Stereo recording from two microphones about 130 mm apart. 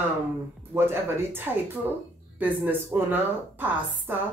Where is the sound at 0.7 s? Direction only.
15° right (ahead or behind).